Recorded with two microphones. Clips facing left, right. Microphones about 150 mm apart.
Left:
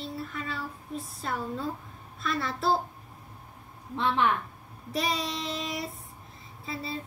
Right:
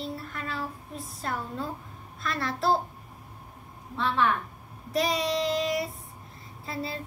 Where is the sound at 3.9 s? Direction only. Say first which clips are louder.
Left 1 dB; 20° left (ahead or behind).